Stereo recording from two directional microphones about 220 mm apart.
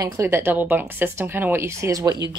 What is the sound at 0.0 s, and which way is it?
Speech, 10° right (ahead or behind).